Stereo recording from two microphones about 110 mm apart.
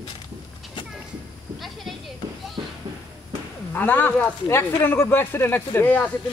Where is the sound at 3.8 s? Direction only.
15° left (ahead or behind).